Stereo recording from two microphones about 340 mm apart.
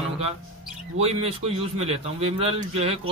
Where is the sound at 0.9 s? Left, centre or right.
Centre.